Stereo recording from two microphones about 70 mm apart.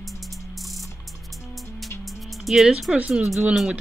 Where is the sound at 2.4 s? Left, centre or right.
Centre.